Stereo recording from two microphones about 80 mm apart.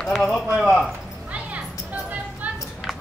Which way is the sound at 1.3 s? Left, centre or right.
Centre.